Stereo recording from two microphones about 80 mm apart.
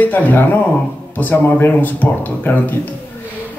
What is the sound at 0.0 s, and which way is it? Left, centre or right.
A man's voice, left.